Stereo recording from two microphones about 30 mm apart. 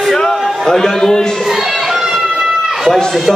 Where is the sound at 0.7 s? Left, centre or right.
Centre.